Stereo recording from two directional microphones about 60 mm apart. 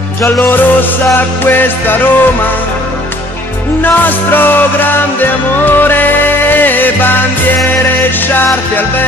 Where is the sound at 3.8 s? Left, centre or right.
Left.